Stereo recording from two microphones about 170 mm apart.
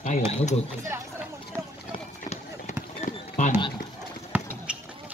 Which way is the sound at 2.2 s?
45° left (ahead or behind).